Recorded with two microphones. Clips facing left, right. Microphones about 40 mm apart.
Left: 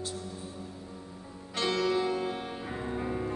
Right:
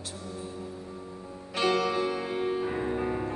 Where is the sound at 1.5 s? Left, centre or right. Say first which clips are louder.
Right 2 dB; centre.